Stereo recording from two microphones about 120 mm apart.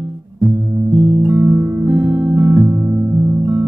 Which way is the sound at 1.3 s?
15° right (ahead or behind).